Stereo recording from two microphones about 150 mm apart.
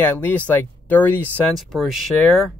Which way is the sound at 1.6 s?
Centre (ahead or behind).